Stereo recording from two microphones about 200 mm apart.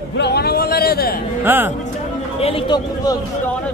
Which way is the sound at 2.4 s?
25° left (ahead or behind).